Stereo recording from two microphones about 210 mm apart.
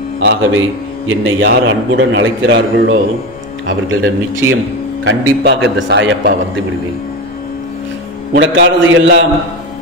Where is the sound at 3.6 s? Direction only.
70° right (ahead or behind).